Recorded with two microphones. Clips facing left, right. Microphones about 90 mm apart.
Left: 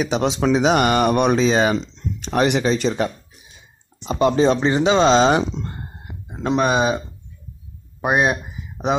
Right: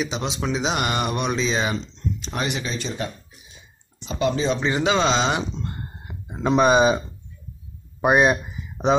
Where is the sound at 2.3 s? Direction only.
65° left (ahead or behind).